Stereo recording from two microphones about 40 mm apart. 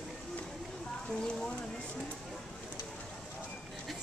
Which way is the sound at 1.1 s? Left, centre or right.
Left.